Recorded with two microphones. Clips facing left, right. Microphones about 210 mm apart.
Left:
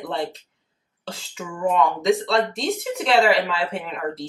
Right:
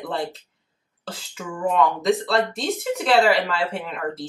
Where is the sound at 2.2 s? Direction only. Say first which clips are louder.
Left 1 dB; centre (ahead or behind).